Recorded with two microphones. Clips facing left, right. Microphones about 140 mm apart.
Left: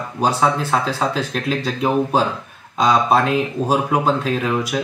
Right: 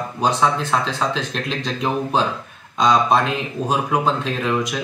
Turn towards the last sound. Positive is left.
turn(degrees=5)  # may be behind; listen again after turning